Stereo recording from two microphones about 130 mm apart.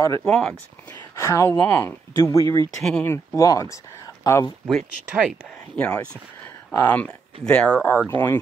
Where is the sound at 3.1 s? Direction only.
25° left (ahead or behind).